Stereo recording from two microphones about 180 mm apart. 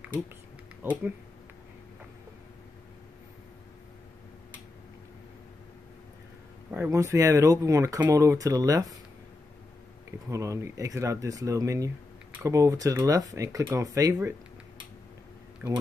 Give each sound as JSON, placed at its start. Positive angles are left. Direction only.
{"t": 0.8, "sound": "speech", "side_deg": -10}
{"t": 6.7, "sound": "speech", "side_deg": -15}
{"t": 10.3, "sound": "speech", "side_deg": -15}
{"t": 15.6, "sound": "speech", "side_deg": -20}